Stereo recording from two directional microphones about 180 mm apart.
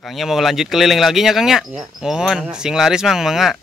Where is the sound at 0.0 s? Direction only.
Centre (ahead or behind).